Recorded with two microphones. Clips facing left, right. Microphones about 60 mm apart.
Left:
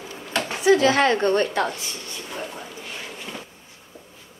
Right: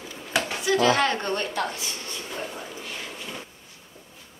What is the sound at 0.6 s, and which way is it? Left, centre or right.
A woman's voice, left.